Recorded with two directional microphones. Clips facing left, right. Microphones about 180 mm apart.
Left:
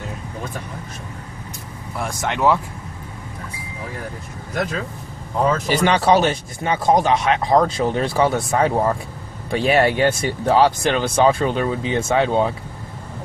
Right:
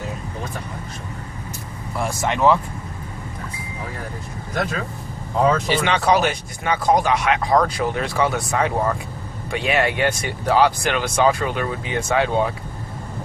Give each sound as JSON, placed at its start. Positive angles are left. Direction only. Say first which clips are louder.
{"t": 2.0, "sound": "speech", "louder": "right 1 dB", "side_deg": 0}
{"t": 5.7, "sound": "speech", "louder": "left 2 dB", "side_deg": 40}